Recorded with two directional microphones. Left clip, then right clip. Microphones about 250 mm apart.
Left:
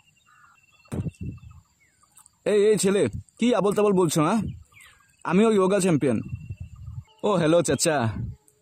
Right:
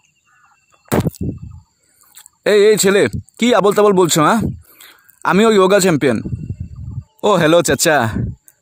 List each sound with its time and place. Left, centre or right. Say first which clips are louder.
2.4 s speech: right 9 dB; right